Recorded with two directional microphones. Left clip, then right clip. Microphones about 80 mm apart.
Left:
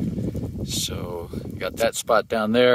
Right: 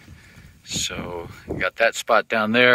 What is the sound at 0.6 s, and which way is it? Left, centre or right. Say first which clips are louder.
Speech: right 3 dB; left.